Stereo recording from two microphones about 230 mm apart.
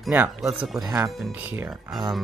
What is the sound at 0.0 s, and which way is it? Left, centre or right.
Speech, centre.